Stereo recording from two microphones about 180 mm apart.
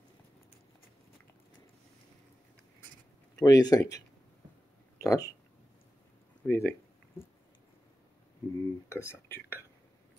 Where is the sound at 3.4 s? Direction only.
20° left (ahead or behind).